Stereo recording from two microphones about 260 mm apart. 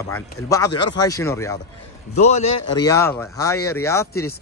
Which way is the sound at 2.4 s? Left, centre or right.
Left.